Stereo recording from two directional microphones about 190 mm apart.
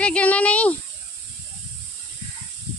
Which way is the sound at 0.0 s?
5° left (ahead or behind).